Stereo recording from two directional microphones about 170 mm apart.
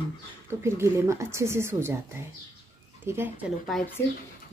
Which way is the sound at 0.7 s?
15° right (ahead or behind).